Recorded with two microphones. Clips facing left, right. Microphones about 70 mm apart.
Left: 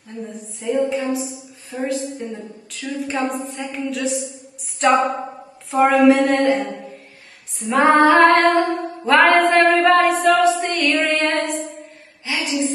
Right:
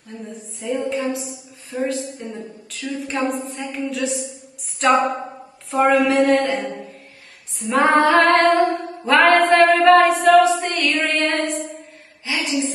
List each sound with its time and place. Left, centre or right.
0.3 s a woman's voice: centre
9.0 s singing: centre
10.2 s music: centre
12.3 s a sound: centre